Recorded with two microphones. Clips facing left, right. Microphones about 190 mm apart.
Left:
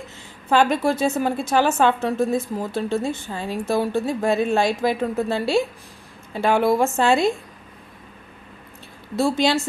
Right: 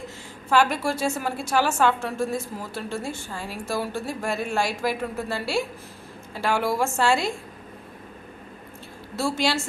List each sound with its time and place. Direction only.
0.5 s a woman's voice: 20° left (ahead or behind)
9.1 s a woman's voice: 20° left (ahead or behind)